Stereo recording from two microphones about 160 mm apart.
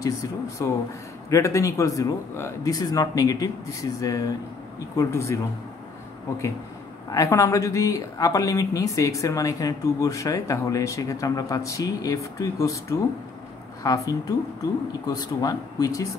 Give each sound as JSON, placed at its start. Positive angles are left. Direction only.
{"t": 0.0, "sound": "speech", "side_deg": 20}
{"t": 7.1, "sound": "speech", "side_deg": 20}